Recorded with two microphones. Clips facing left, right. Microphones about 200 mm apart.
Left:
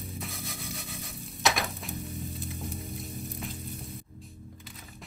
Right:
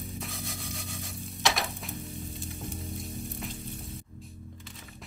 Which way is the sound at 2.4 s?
Centre (ahead or behind).